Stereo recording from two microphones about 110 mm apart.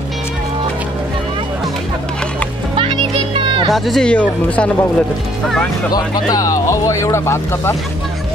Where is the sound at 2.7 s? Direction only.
50° right (ahead or behind).